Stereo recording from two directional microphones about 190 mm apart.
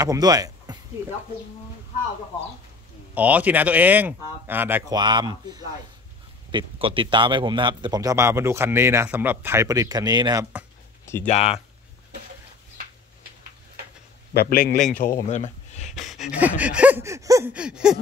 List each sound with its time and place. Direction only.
0.0 s speech: 20° right (ahead or behind)
3.2 s gasp: 10° right (ahead or behind)
4.9 s a man's voice: 25° right (ahead or behind)
11.2 s speech: 35° left (ahead or behind)
14.3 s a man's voice: 55° left (ahead or behind)
14.8 s speech: 45° left (ahead or behind)
15.9 s gasp: centre (ahead or behind)